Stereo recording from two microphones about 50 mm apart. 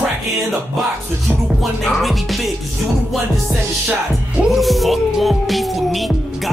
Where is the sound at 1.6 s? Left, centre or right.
Centre.